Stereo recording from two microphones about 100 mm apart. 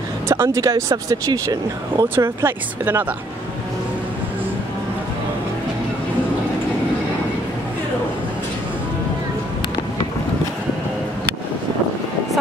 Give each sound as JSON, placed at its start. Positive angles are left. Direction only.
{"t": 0.3, "sound": "speech", "side_deg": -25}
{"t": 2.1, "sound": "speech", "side_deg": -25}